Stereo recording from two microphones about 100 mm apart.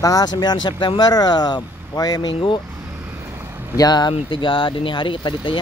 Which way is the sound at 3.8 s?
45° left (ahead or behind).